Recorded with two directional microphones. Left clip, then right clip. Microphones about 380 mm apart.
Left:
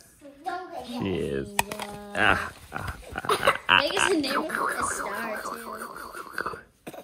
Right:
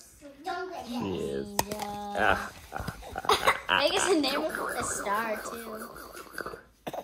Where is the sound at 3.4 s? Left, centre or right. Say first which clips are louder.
Left 8 dB; right.